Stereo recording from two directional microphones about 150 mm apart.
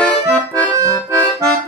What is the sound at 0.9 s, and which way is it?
Accordion, 5° left (ahead or behind).